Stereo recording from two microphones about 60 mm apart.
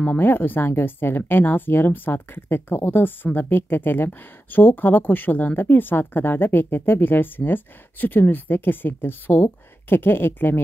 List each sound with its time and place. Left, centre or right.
0.2 s speech: left